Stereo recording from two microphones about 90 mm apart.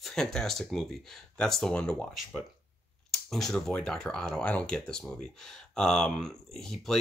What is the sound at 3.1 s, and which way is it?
Speech, 5° left (ahead or behind).